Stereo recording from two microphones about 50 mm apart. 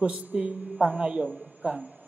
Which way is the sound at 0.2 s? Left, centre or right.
Right.